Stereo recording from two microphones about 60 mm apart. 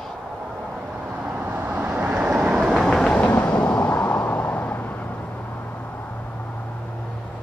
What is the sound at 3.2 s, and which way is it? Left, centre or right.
Vehicle, left.